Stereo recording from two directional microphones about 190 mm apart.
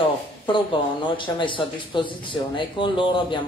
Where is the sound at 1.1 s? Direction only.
25° left (ahead or behind).